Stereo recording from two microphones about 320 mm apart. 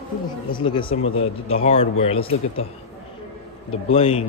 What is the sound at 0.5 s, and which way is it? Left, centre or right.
A man's voice, centre.